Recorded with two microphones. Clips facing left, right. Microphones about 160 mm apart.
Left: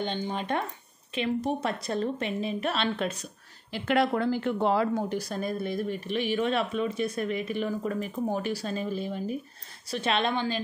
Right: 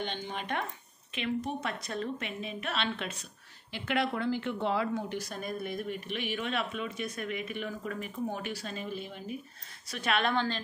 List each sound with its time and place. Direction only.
0.0 s speech: 35° left (ahead or behind)
9.8 s speech: 30° left (ahead or behind)